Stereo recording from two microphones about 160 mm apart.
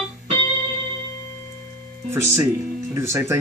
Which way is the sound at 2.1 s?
15° right (ahead or behind).